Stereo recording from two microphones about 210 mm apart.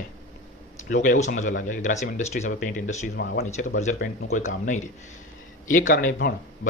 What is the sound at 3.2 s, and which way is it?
Speech, 55° left (ahead or behind).